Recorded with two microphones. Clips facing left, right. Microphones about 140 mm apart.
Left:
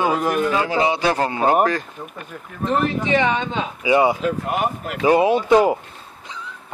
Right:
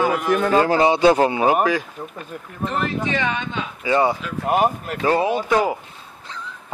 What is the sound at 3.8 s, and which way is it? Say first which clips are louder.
A man's voice: left 3 dB; 10° left (ahead or behind).